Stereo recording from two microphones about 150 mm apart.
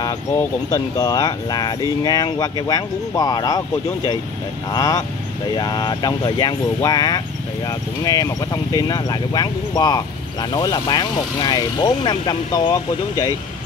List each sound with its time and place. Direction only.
0.3 s speech: 15° left (ahead or behind)
4.6 s speech: 25° left (ahead or behind)